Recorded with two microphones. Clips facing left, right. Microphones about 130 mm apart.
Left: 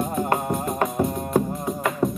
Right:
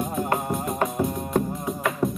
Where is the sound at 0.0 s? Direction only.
Centre (ahead or behind).